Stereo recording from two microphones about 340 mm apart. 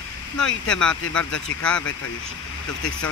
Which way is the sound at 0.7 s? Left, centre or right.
Centre.